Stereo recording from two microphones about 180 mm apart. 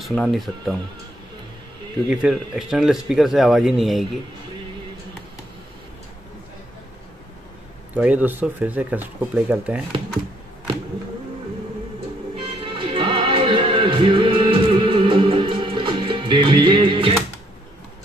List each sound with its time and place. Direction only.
0.0 s speech: centre (ahead or behind)
2.0 s speech: 5° right (ahead or behind)
7.9 s speech: 10° right (ahead or behind)
12.4 s music: 25° right (ahead or behind)